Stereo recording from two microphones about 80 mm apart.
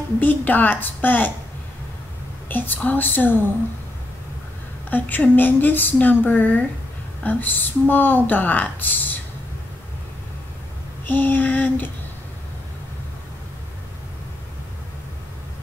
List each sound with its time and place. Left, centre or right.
0.2 s speech: left
2.4 s speech: left
4.8 s speech: left
11.1 s speech: left